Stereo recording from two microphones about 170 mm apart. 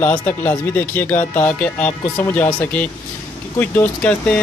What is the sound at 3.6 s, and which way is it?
Speech, 10° left (ahead or behind).